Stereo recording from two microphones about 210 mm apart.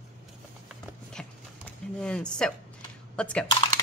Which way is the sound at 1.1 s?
5° left (ahead or behind).